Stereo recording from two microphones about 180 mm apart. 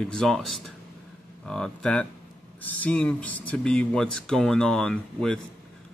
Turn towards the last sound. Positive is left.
turn(degrees=5)  # may be behind; listen again after turning